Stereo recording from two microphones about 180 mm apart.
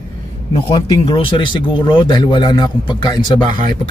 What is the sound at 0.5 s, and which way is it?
Speech, 30° left (ahead or behind).